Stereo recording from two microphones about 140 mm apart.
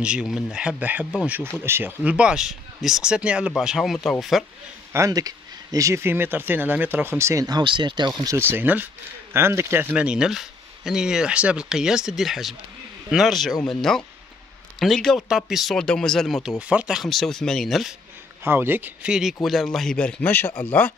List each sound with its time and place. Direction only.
0.0 s speech: 5° right (ahead or behind)
4.9 s speech: 25° right (ahead or behind)
8.2 s speech: 20° right (ahead or behind); by 17.9 s centre (ahead or behind)
18.4 s speech: 15° right (ahead or behind); by 20.6 s 15° left (ahead or behind)